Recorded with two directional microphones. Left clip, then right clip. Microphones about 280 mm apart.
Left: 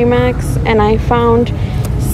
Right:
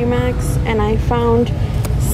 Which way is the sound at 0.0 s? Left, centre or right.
Centre.